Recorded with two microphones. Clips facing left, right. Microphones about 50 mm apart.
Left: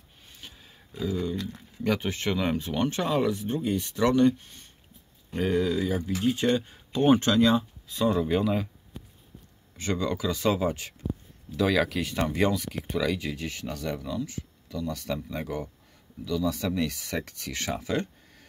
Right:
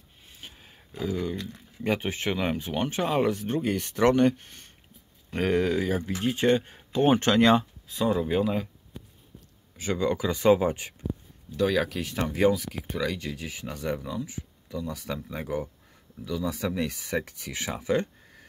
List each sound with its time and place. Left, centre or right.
0.4 s a sound: right
0.9 s speech: right
1.8 s speech: right
3.3 s speech: right
7.9 s speech: centre
9.9 s speech: right
11.5 s speech: centre
13.7 s speech: right
14.2 s a sound: centre
14.9 s speech: centre